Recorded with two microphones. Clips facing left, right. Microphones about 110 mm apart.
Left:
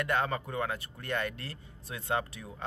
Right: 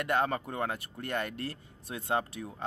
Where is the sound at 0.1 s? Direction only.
40° right (ahead or behind).